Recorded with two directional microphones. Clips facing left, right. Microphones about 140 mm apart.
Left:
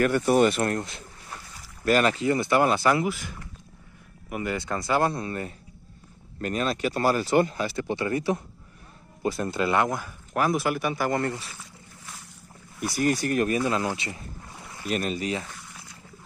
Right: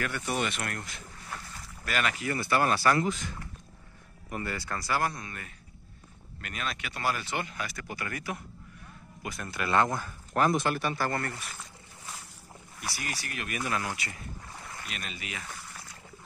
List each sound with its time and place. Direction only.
0.0 s speech: 45° left (ahead or behind); by 1.0 s 30° left (ahead or behind)
1.9 s speech: 40° left (ahead or behind)
2.1 s speech: 20° left (ahead or behind)
9.9 s speech: 10° left (ahead or behind)
12.9 s speech: 45° left (ahead or behind)
13.5 s speech: 25° left (ahead or behind)
14.9 s speech: 40° left (ahead or behind)